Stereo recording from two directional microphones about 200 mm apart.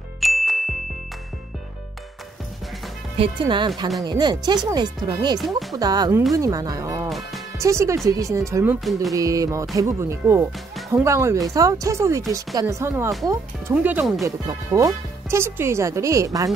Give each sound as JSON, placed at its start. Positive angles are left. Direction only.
{"t": 0.2, "sound": "ding", "side_deg": 0}
{"t": 3.2, "sound": "speech", "side_deg": -25}
{"t": 5.4, "sound": "speech", "side_deg": 0}
{"t": 5.8, "sound": "speech", "side_deg": -20}
{"t": 7.1, "sound": "music", "side_deg": 0}
{"t": 7.5, "sound": "speech", "side_deg": -15}
{"t": 14.2, "sound": "speech", "side_deg": -15}